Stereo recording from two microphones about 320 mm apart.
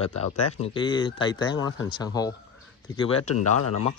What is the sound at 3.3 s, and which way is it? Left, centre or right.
Speech, left.